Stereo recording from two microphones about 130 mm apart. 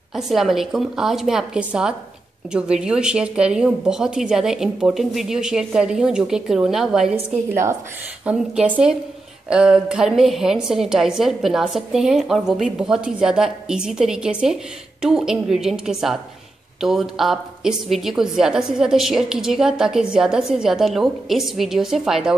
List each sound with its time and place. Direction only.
0.1 s a woman's voice: 5° right (ahead or behind)